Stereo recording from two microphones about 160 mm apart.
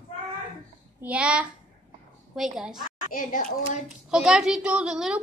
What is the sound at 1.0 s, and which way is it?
A woman's voice, 10° right (ahead or behind).